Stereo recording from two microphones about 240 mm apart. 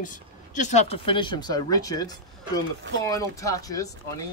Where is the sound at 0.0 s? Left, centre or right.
Left; by 3.9 s centre.